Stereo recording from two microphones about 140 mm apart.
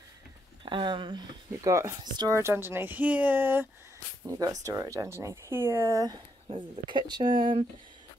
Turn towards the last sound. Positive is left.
turn(degrees=-35)  # may be behind; listen again after turning